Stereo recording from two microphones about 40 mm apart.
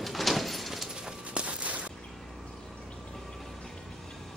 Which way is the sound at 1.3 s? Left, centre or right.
Right.